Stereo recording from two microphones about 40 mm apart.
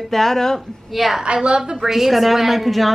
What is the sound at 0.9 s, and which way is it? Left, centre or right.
Speech, centre.